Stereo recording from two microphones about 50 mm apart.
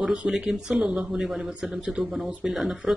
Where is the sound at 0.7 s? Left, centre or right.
Right.